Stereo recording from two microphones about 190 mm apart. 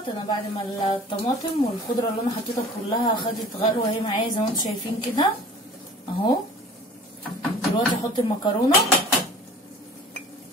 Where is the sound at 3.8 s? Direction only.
25° left (ahead or behind).